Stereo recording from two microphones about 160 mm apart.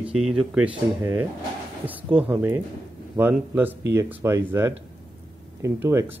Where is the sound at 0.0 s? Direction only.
5° right (ahead or behind).